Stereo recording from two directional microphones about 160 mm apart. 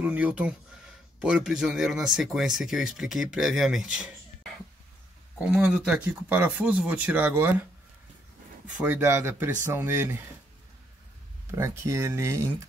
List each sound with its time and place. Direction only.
0.0 s speech: 10° right (ahead or behind)
8.6 s speech: 10° right (ahead or behind)
11.5 s speech: 15° right (ahead or behind)